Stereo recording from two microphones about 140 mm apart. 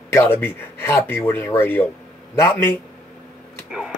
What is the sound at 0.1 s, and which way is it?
Speech, 15° left (ahead or behind).